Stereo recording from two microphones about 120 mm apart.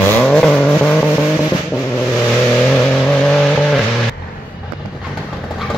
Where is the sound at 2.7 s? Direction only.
5° left (ahead or behind).